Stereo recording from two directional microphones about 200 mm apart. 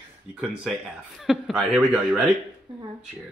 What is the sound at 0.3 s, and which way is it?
Speech, 5° right (ahead or behind).